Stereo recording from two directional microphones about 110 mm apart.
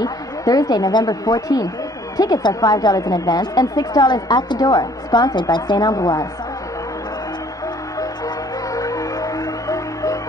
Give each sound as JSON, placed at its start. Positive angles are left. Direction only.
{"t": 0.0, "sound": "a woman's voice", "side_deg": 35}
{"t": 8.7, "sound": "music", "side_deg": 30}